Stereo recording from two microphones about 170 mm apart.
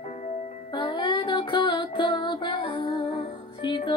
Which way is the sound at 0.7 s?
25° left (ahead or behind).